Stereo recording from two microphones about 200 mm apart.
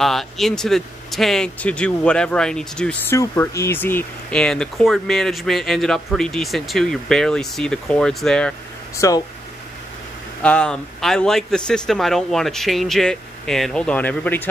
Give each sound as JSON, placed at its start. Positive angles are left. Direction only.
{"t": 0.0, "sound": "speech", "side_deg": 0}
{"t": 8.9, "sound": "speech", "side_deg": 15}
{"t": 10.4, "sound": "speech", "side_deg": 5}